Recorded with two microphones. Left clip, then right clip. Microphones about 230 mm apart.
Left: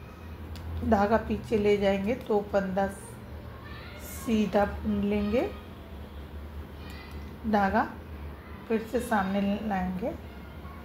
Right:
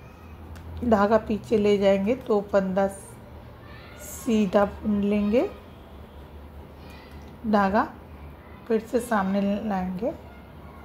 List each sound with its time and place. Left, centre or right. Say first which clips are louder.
0.8 s a woman's voice: right 4 dB; right
4.3 s a woman's voice: right 4 dB; right
7.5 s a woman's voice: right 3 dB; right